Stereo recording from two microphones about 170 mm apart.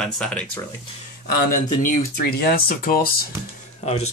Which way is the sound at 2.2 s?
65° left (ahead or behind).